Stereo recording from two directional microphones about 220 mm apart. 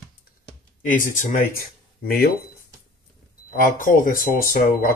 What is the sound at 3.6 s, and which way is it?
Speech, 40° left (ahead or behind).